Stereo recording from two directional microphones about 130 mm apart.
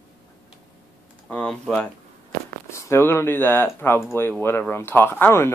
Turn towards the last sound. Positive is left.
turn(degrees=15)  # may be behind; listen again after turning